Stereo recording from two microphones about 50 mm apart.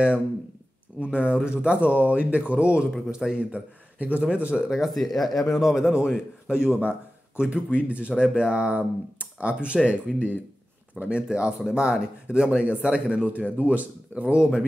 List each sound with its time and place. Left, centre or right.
0.9 s speech: right
3.1 s speech: centre
4.6 s speech: centre
5.6 s speech: centre; by 14.5 s right